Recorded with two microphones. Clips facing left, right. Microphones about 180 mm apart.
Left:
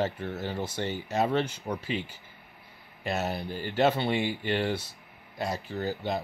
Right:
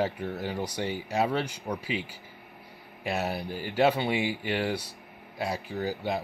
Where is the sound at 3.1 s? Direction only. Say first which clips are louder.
Even; 10° right (ahead or behind).